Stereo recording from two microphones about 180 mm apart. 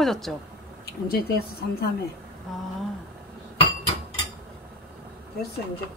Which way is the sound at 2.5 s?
Centre (ahead or behind).